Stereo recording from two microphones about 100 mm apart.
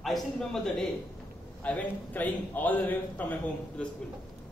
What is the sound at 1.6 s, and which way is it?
A man's voice, 15° left (ahead or behind).